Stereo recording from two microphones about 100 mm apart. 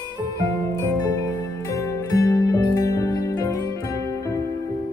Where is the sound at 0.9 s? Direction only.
35° left (ahead or behind).